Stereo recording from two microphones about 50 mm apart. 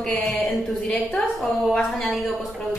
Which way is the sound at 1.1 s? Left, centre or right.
Centre.